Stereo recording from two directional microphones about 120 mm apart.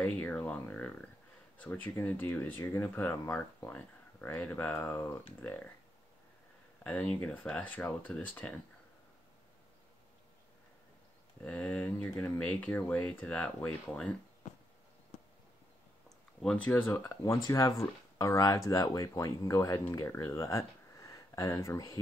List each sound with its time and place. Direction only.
0.0 s speech: 15° left (ahead or behind)
6.8 s speech: 10° left (ahead or behind)
11.4 s speech: 10° left (ahead or behind)
16.4 s speech: 10° left (ahead or behind); by 22.0 s 30° left (ahead or behind)